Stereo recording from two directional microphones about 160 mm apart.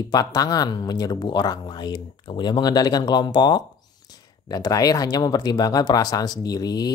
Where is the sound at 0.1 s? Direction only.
25° left (ahead or behind).